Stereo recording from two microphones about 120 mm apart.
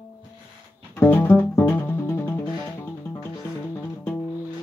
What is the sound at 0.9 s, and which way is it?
Music, 20° left (ahead or behind).